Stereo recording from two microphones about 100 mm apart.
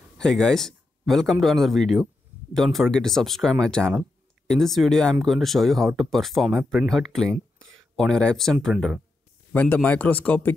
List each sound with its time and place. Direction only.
0.2 s speech: 5° left (ahead or behind)
9.5 s speech: 15° left (ahead or behind)